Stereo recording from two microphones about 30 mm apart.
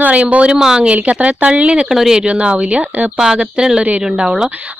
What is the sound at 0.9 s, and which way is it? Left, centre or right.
Speech, right.